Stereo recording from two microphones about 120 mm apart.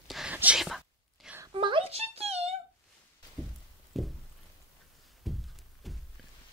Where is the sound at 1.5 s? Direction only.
45° right (ahead or behind).